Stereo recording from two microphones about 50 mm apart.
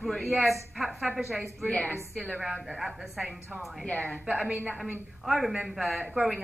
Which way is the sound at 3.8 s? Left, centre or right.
Left.